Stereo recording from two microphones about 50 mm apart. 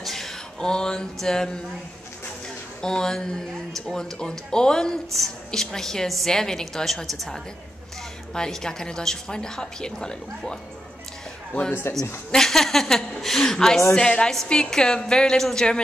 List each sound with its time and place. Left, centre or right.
0.0 s a sound: centre
1.2 s speech: centre
2.8 s speech: centre
8.4 s speech: centre
11.9 s speech: left
12.3 s speech: centre